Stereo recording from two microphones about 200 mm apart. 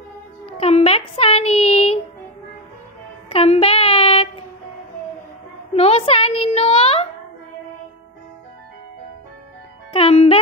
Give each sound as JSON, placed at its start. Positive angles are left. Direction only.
{"t": 0.5, "sound": "a sound", "side_deg": 30}
{"t": 3.3, "sound": "child singing", "side_deg": 30}
{"t": 5.8, "sound": "a woman's voice", "side_deg": 30}
{"t": 9.9, "sound": "a woman's voice", "side_deg": 30}